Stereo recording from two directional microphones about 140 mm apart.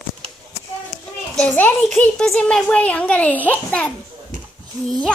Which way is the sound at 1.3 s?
10° left (ahead or behind).